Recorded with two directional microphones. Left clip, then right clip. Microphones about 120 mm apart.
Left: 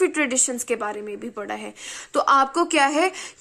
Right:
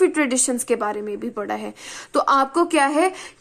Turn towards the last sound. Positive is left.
turn(degrees=30)  # may be behind; listen again after turning